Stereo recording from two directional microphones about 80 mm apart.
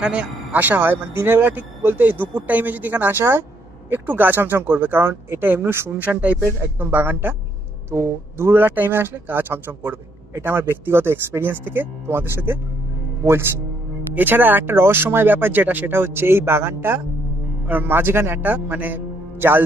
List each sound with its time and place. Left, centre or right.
0.0 s speech: centre; by 5.9 s right
6.1 s speech: centre
6.4 s speech: right